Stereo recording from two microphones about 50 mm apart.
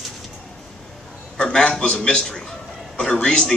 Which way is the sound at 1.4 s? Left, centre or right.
Centre.